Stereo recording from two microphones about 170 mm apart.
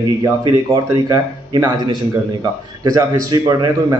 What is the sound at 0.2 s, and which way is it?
Speech, 20° right (ahead or behind).